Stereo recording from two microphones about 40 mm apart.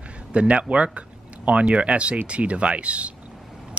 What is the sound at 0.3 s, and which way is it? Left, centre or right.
Speech, right.